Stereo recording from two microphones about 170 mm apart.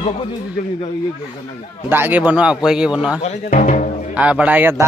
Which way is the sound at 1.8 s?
10° right (ahead or behind).